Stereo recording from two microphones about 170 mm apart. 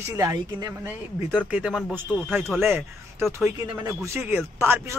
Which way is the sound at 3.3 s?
15° right (ahead or behind).